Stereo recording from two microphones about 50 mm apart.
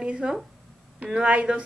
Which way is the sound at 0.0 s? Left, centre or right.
Centre.